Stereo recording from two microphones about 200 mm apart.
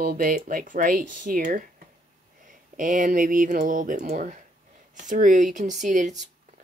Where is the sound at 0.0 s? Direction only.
45° right (ahead or behind).